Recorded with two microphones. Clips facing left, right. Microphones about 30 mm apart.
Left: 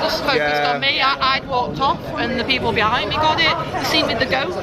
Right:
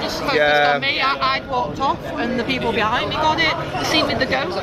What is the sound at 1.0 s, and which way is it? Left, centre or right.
Speech, left.